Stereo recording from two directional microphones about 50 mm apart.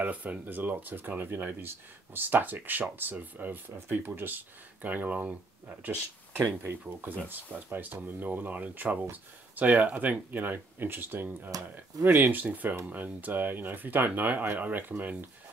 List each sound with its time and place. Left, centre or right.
0.0 s speech: right
3.7 s speech: right
6.3 s speech: right